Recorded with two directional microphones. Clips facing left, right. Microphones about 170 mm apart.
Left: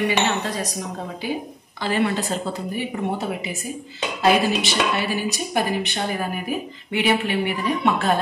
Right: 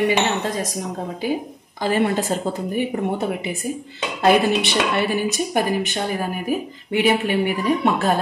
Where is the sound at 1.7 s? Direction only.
45° right (ahead or behind).